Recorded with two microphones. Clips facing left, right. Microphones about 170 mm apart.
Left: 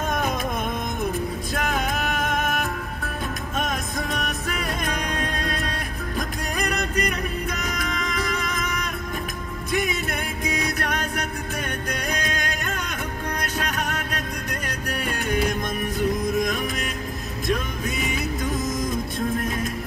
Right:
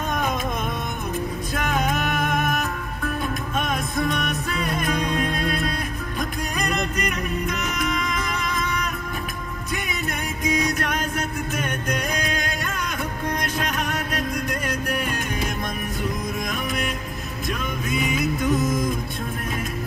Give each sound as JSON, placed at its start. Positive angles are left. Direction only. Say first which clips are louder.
{"t": 3.5, "sound": "music", "louder": "right 2 dB", "side_deg": 40}
{"t": 7.0, "sound": "music", "louder": "even", "side_deg": 35}
{"t": 17.5, "sound": "music", "louder": "left 2 dB", "side_deg": 40}